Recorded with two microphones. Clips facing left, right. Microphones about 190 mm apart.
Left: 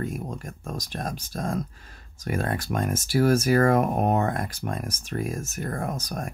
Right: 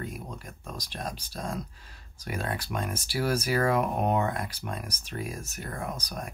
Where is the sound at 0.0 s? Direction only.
50° left (ahead or behind).